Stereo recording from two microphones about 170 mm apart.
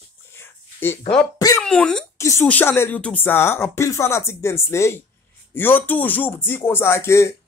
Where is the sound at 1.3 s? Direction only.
20° left (ahead or behind).